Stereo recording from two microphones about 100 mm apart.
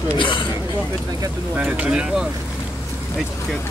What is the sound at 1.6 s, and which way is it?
Speech, 15° right (ahead or behind).